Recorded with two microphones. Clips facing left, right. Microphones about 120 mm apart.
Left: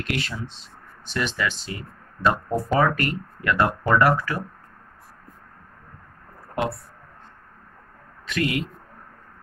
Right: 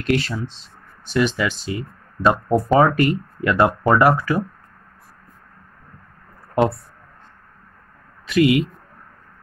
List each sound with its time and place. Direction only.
0.0 s speech: 35° right (ahead or behind)
1.0 s speech: 15° right (ahead or behind)
8.3 s speech: 10° right (ahead or behind)